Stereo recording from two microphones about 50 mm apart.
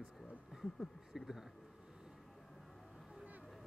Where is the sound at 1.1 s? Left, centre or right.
Centre.